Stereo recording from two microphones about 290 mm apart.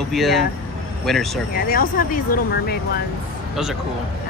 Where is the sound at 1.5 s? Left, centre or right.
Left.